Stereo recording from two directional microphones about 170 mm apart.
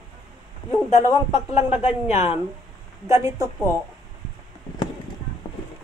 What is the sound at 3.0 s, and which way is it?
Speech, 15° right (ahead or behind).